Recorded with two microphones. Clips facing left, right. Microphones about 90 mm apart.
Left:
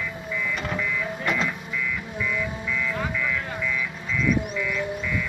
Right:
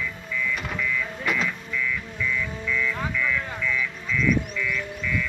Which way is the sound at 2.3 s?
15° left (ahead or behind).